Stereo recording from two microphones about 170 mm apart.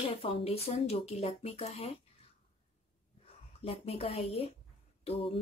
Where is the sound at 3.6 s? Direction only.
35° left (ahead or behind).